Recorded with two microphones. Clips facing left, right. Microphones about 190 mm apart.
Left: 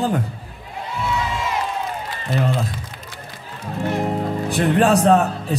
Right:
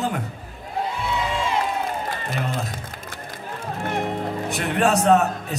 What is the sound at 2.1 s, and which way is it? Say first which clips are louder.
Music: left 5 dB; 45° right (ahead or behind).